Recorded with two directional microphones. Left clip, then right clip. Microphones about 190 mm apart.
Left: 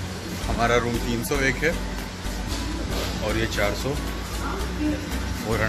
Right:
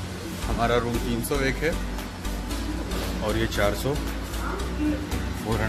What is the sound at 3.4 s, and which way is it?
Speech, 20° right (ahead or behind).